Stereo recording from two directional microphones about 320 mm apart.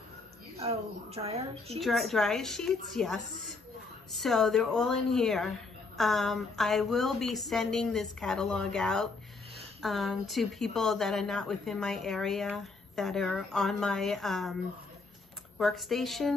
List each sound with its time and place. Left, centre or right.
0.6 s a woman's voice: centre
1.8 s speech: centre
15.6 s speech: centre